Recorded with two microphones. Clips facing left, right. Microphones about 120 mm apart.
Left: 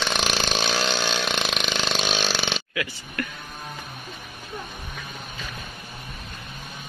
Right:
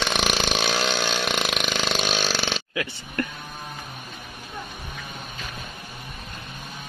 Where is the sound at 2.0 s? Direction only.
10° right (ahead or behind).